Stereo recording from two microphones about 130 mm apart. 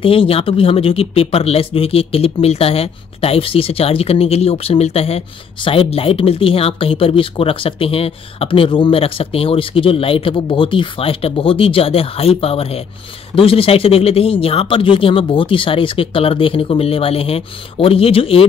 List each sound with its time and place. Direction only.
0.0 s speech: 45° left (ahead or behind)